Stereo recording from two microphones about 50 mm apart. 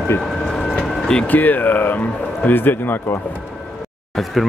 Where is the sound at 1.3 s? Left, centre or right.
Left.